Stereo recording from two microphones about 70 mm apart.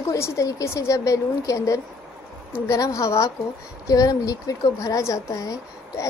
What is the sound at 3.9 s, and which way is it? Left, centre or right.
A woman's voice, left.